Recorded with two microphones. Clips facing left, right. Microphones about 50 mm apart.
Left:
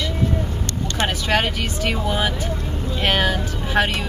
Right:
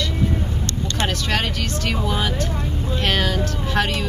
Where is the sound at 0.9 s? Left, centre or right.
Centre.